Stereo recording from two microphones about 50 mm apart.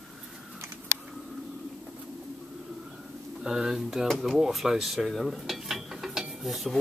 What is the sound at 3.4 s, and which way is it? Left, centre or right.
Speech, centre.